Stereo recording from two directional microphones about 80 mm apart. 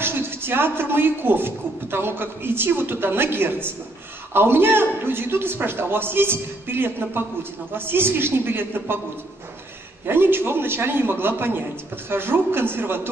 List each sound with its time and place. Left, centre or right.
0.0 s a man's voice: right
10.0 s a man's voice: right